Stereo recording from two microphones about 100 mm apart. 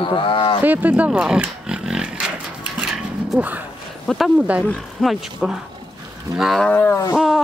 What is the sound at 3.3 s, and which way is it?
Speech, 15° right (ahead or behind).